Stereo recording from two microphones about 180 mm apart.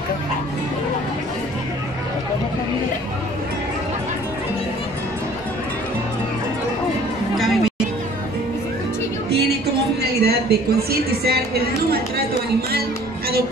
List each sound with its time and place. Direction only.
10.2 s a woman's voice: 60° right (ahead or behind)